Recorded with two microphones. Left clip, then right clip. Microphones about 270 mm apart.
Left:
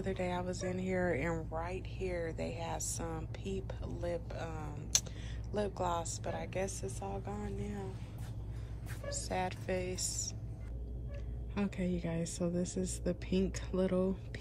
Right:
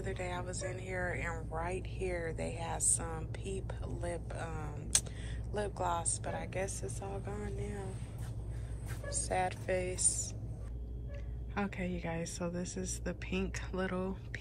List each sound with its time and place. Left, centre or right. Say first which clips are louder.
0.0 s speech: left 3 dB; centre
9.3 s speech: right 3 dB; centre
11.8 s speech: left 1 dB; centre